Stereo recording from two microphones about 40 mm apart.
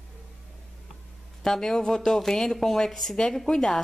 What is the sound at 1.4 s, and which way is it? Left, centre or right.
Speech, centre.